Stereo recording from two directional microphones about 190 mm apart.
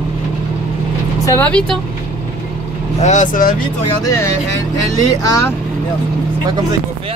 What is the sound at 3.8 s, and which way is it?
Speech, 15° left (ahead or behind).